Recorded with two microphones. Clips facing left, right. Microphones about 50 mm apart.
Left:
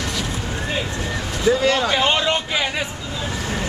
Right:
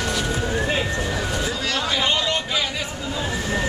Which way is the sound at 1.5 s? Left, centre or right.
Left.